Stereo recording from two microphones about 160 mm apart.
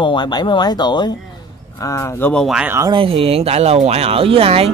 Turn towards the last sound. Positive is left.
turn(degrees=-40)  # may be behind; listen again after turning